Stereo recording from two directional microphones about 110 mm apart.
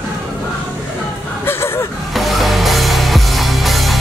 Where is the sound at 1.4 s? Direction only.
20° left (ahead or behind).